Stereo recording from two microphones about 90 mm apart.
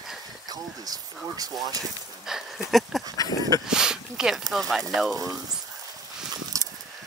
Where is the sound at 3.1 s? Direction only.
45° left (ahead or behind).